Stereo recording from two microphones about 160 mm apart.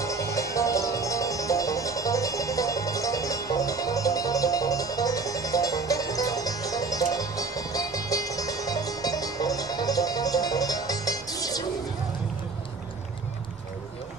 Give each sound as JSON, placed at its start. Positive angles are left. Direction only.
{"t": 0.0, "sound": "music", "side_deg": 20}